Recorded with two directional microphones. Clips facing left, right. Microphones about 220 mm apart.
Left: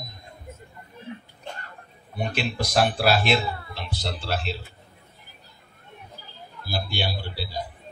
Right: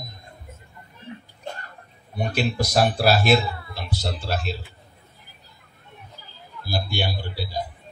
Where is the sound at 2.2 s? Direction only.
40° right (ahead or behind).